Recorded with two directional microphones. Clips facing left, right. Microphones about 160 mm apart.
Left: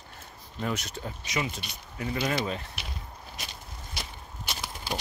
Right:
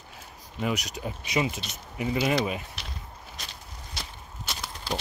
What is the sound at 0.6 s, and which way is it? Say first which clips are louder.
Speech: right 3 dB; 10° right (ahead or behind).